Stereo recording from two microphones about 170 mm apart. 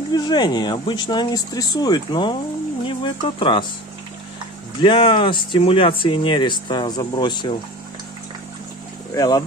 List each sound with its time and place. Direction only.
0.1 s speech: 25° left (ahead or behind)
4.8 s speech: 30° left (ahead or behind)
9.1 s speech: 25° left (ahead or behind)